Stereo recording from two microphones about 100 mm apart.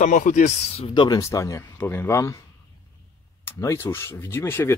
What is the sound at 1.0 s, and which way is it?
Speech, 40° left (ahead or behind).